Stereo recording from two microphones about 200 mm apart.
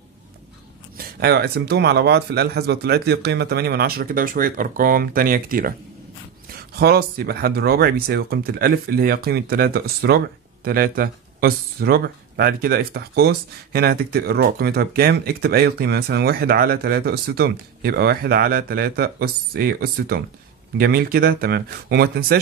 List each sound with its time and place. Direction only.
0.9 s speech: 55° right (ahead or behind)